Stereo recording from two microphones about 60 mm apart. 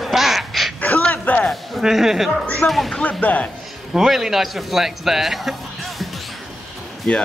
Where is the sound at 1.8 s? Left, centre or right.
Centre.